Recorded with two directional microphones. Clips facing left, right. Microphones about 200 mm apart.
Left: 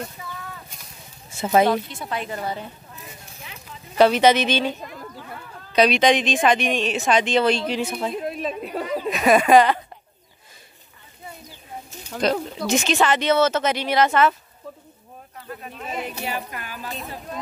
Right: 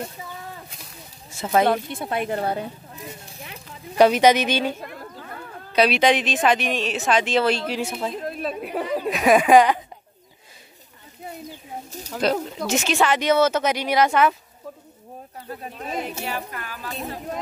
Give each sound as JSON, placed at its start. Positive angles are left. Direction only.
{"t": 1.4, "sound": "speech", "side_deg": 10}
{"t": 1.7, "sound": "a woman's voice", "side_deg": -55}
{"t": 3.0, "sound": "speech", "side_deg": -35}
{"t": 3.9, "sound": "speech", "side_deg": -10}
{"t": 12.1, "sound": "speech", "side_deg": -5}
{"t": 15.4, "sound": "speech", "side_deg": -35}
{"t": 16.3, "sound": "speech", "side_deg": 15}